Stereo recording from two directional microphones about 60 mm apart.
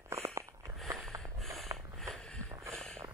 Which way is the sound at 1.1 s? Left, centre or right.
Right.